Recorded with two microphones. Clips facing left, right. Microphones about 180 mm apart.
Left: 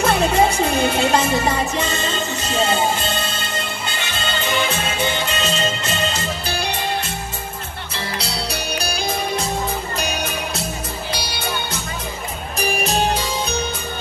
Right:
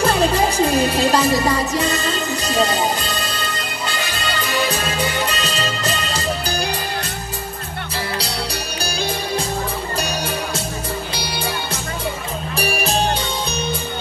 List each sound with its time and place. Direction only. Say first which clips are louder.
0.0 s music: even; 35° right (ahead or behind)
7.9 s music: right 2 dB; 30° right (ahead or behind)
12.5 s music: even; 30° right (ahead or behind)